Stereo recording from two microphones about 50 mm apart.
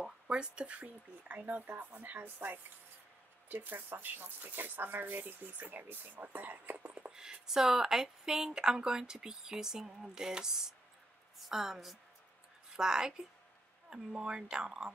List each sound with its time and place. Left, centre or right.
0.0 s speech: centre; by 7.1 s right
7.1 s a sound: centre
7.5 s a woman's voice: centre